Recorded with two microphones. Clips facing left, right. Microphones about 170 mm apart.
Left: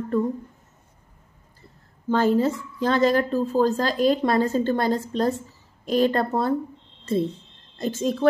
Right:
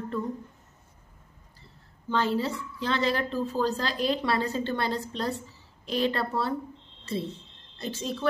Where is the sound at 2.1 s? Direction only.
45° left (ahead or behind).